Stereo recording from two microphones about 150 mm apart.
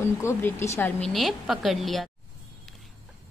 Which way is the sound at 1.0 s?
Centre (ahead or behind).